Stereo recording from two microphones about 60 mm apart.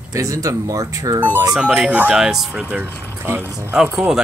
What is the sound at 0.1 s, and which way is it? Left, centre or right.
Speech, right.